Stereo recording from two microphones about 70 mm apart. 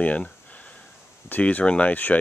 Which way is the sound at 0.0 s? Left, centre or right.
Left.